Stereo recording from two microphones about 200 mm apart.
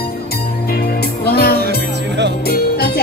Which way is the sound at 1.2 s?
50° left (ahead or behind).